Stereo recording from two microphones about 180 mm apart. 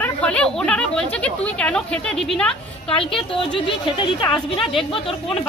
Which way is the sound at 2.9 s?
30° left (ahead or behind).